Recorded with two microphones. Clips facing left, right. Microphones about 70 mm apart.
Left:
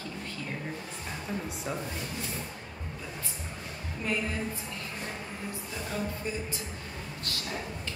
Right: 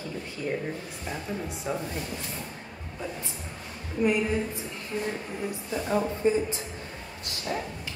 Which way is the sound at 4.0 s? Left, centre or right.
Centre.